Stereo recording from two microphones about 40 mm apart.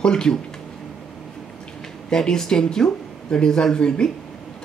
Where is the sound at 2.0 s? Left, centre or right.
Centre.